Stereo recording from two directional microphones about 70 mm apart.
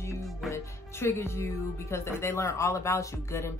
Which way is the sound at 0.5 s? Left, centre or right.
Left.